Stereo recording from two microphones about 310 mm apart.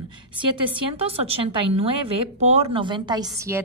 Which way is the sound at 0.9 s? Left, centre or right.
Centre.